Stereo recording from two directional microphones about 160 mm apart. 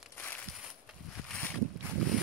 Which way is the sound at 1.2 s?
10° left (ahead or behind).